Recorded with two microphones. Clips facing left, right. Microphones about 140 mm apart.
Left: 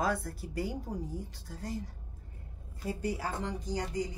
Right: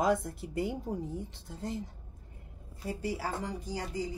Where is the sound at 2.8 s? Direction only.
5° right (ahead or behind).